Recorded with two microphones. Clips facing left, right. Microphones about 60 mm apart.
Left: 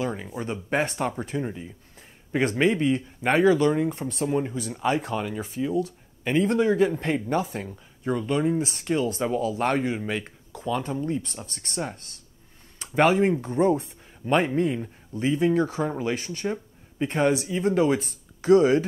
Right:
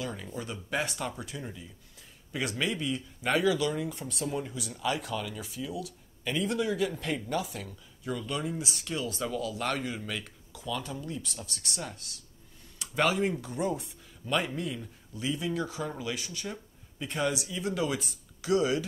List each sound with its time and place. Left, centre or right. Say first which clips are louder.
0.0 s speech: left 7 dB; left